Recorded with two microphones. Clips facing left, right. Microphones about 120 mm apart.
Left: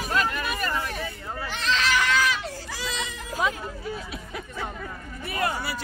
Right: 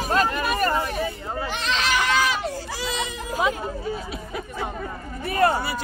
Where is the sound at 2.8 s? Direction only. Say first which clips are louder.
Right 2 dB; 15° right (ahead or behind).